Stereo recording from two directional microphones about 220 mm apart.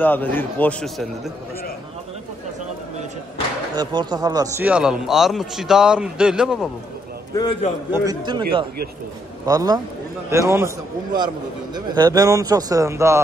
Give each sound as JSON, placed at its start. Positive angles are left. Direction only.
{"t": 0.0, "sound": "a man's voice", "side_deg": 10}
{"t": 3.7, "sound": "a man's voice", "side_deg": -20}
{"t": 7.3, "sound": "a man's voice", "side_deg": 20}
{"t": 7.9, "sound": "speech", "side_deg": -15}
{"t": 11.7, "sound": "speech", "side_deg": -20}